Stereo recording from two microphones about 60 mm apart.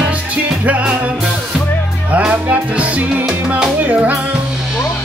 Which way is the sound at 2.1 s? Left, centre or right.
Right.